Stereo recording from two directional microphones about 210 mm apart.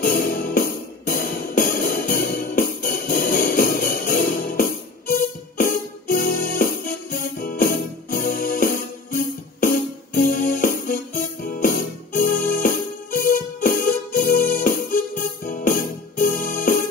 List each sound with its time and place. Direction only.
0.0 s music: 45° left (ahead or behind)